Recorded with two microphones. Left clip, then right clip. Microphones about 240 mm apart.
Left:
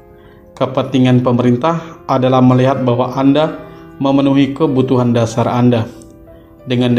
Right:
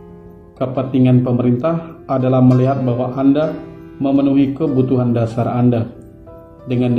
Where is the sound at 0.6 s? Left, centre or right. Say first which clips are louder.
Left 3 dB; left.